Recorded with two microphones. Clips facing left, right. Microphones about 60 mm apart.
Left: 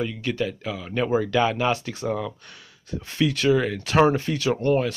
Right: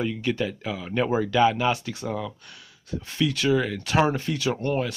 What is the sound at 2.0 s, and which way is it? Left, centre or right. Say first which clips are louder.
Speech: left 4 dB; centre.